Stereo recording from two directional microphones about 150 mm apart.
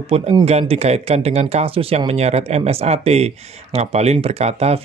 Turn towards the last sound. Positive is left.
turn(degrees=-45)  # may be behind; listen again after turning